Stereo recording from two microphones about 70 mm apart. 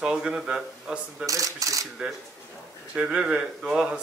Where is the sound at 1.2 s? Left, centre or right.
Right.